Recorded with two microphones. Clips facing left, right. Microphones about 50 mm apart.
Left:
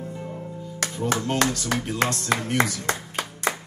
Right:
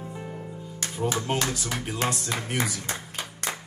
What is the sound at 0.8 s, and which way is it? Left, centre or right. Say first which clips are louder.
Music: left 6 dB; left.